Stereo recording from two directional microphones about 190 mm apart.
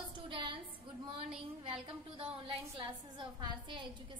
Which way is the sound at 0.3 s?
25° right (ahead or behind).